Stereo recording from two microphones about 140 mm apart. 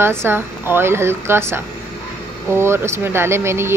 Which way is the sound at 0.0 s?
15° right (ahead or behind).